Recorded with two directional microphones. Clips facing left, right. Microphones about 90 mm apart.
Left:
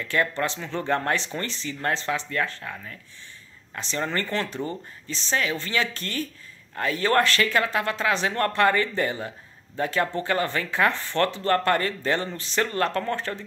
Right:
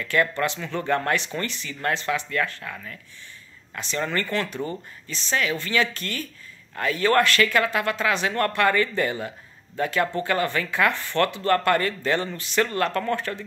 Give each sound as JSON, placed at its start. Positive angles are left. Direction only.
{"t": 0.0, "sound": "speech", "side_deg": 25}